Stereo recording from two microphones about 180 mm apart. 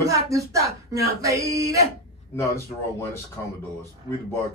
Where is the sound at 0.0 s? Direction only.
20° right (ahead or behind).